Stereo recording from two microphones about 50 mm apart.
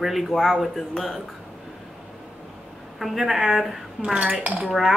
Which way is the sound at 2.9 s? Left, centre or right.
Centre.